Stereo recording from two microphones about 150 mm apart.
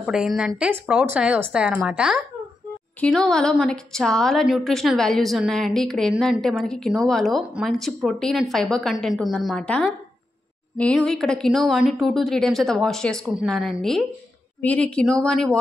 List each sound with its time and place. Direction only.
0.0 s a woman's voice: 5° right (ahead or behind)